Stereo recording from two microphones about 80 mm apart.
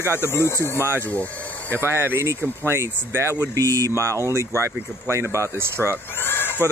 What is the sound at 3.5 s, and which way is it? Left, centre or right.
Speech, right.